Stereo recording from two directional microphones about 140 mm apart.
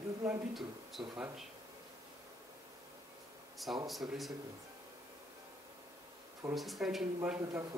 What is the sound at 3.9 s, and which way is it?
Speech, centre (ahead or behind).